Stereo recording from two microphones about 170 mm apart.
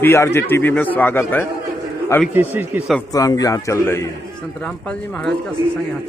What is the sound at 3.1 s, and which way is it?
Speech, 20° left (ahead or behind).